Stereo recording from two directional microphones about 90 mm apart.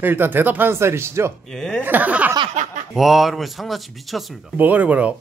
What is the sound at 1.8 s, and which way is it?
Speech, 20° right (ahead or behind).